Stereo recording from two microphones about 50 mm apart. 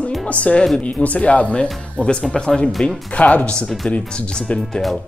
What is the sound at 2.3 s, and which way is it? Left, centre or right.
Speech, centre.